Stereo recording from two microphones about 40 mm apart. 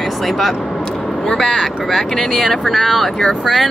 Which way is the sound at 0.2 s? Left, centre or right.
Centre.